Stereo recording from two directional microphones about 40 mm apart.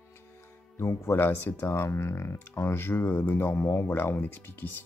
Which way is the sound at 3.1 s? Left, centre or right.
Left.